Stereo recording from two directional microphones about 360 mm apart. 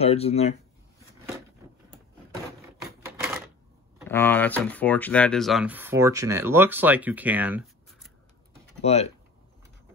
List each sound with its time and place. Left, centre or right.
0.0 s speech: centre
4.1 s speech: centre
8.8 s speech: centre